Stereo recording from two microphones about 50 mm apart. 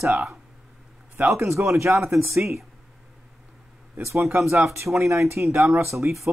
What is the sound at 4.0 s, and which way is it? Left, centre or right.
Speech, right.